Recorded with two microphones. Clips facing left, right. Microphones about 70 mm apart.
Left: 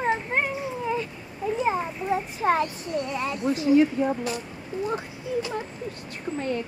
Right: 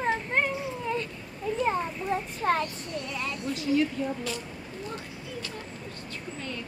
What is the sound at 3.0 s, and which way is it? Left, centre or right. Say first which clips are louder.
Speech: left 7 dB; left.